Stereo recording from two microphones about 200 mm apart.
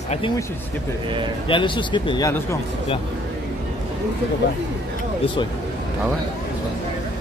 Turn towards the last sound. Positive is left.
turn(degrees=25)  # may be behind; listen again after turning